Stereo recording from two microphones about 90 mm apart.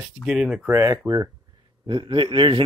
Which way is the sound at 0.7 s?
35° right (ahead or behind).